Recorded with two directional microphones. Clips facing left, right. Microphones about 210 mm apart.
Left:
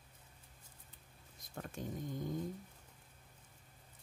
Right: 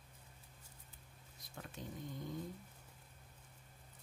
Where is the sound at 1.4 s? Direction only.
45° left (ahead or behind).